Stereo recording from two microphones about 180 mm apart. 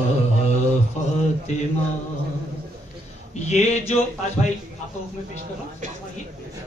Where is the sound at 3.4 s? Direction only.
40° left (ahead or behind).